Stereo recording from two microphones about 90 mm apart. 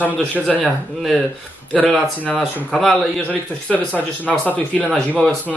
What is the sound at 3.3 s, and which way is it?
Speech, 15° left (ahead or behind).